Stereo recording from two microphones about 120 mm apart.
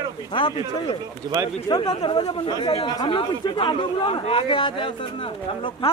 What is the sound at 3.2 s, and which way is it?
A man's voice, 45° left (ahead or behind).